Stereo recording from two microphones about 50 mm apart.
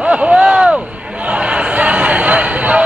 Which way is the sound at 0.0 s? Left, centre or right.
Right.